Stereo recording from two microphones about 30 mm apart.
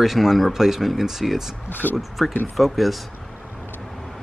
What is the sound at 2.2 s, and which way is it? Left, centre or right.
Speech, centre.